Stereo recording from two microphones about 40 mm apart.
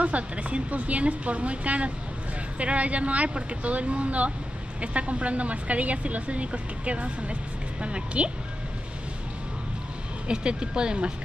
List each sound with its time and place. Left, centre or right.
0.0 s speech: right
10.2 s speech: right